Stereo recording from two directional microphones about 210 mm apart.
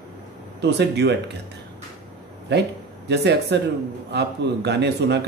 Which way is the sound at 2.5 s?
55° right (ahead or behind).